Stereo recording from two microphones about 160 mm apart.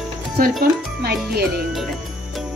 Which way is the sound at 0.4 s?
75° right (ahead or behind).